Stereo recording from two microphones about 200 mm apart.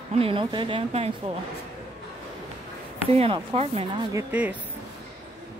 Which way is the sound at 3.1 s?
30° right (ahead or behind).